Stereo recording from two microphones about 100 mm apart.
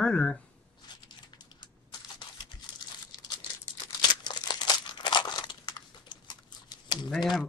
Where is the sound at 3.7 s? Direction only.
45° left (ahead or behind).